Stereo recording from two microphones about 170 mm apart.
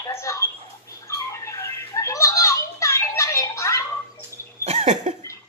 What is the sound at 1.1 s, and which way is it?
Children playing, 15° left (ahead or behind).